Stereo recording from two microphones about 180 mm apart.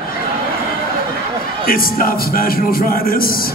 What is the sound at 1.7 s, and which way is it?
A man's voice, 55° left (ahead or behind).